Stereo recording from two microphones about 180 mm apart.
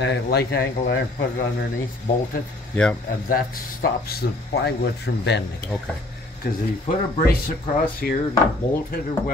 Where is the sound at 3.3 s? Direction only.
55° left (ahead or behind); by 5.4 s 70° left (ahead or behind).